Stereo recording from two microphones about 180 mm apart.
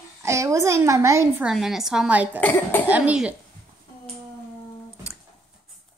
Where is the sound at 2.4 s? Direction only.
10° left (ahead or behind).